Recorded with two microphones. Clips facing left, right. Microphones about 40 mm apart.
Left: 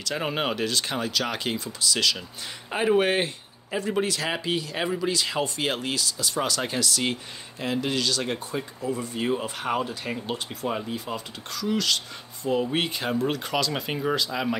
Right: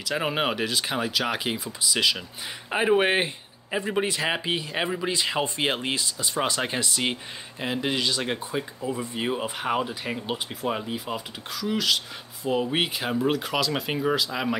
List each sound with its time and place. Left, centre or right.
0.0 s speech: centre